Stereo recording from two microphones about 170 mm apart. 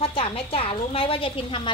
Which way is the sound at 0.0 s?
35° left (ahead or behind).